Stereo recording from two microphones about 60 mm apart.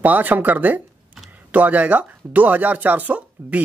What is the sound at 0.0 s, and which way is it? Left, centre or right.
Speech, right.